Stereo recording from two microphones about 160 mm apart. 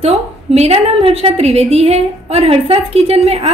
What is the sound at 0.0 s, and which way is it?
A woman's voice, 40° right (ahead or behind).